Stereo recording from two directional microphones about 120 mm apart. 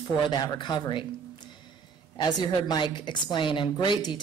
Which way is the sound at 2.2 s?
35° left (ahead or behind).